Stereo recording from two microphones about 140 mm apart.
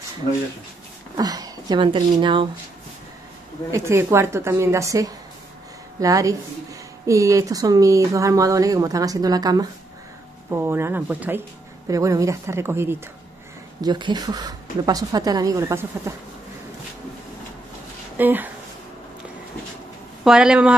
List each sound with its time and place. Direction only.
1.1 s speech: 25° right (ahead or behind)
3.7 s speech: 20° right (ahead or behind)
10.5 s speech: 15° right (ahead or behind)
11.9 s speech: 25° right (ahead or behind)
13.7 s speech: 30° right (ahead or behind)
18.1 s speech: 15° right (ahead or behind)
20.2 s speech: 5° right (ahead or behind)